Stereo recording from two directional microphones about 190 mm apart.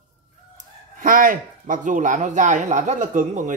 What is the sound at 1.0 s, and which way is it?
Speech, 45° right (ahead or behind).